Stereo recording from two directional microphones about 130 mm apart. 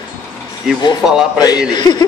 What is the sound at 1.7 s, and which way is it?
Speech, 35° left (ahead or behind).